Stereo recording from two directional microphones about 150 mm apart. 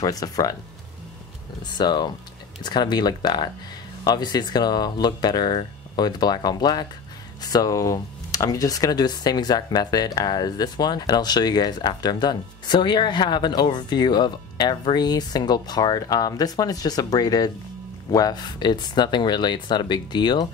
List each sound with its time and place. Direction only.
0.0 s speech: 25° left (ahead or behind)
1.7 s speech: 30° left (ahead or behind)